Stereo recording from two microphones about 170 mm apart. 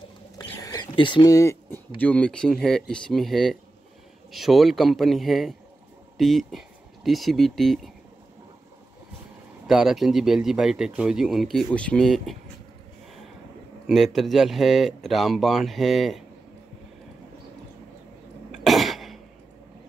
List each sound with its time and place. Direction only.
0.4 s a sound: 20° left (ahead or behind)
2.0 s speech: 5° left (ahead or behind)
9.7 s speech: centre (ahead or behind)
13.8 s speech: centre (ahead or behind)
18.6 s cough: centre (ahead or behind)